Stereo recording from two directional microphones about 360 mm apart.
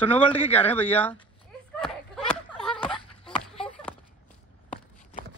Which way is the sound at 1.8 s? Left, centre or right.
Centre.